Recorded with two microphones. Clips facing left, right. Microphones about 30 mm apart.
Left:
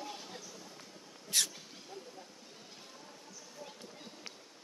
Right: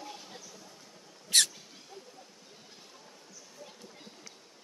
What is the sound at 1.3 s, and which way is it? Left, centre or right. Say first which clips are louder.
Mouse: right 7 dB; right.